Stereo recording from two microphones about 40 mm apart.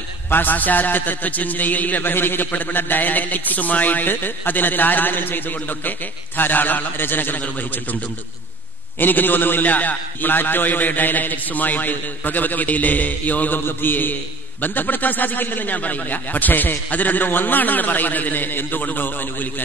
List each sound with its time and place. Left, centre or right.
0.3 s a man's voice: left
2.1 s a man's voice: left
9.0 s a man's voice: left
13.7 s a man's voice: left